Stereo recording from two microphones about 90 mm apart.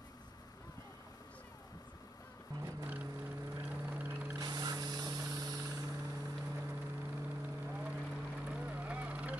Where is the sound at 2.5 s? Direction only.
40° right (ahead or behind).